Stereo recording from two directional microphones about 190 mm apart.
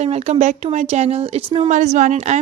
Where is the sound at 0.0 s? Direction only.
35° right (ahead or behind).